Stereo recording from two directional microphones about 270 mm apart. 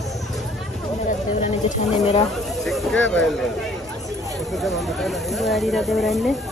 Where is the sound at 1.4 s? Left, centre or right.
Left.